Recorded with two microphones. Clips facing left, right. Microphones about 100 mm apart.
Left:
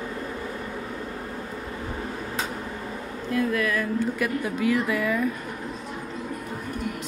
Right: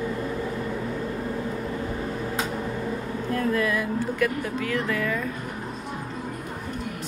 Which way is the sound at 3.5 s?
25° right (ahead or behind).